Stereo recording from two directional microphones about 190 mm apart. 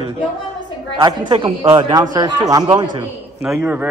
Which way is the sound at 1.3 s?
25° right (ahead or behind).